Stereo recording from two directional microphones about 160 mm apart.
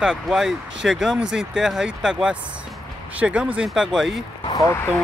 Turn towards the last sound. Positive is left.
turn(degrees=20)  # may be behind; listen again after turning